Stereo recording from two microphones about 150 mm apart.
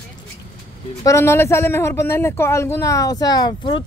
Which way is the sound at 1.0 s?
20° left (ahead or behind).